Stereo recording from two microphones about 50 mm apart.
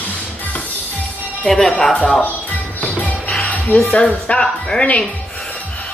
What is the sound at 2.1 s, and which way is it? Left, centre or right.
Music, left.